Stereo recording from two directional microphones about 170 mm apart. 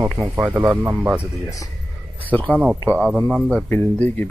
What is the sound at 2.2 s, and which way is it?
Speech, 10° left (ahead or behind).